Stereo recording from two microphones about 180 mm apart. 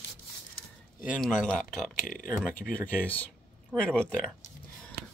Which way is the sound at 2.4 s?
5° left (ahead or behind).